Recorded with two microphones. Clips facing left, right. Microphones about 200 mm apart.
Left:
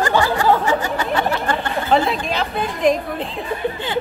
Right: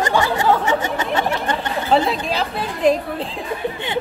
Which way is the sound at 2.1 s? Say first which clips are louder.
Even; 35° right (ahead or behind).